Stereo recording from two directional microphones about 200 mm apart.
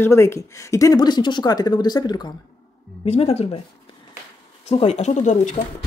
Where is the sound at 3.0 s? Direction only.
30° left (ahead or behind).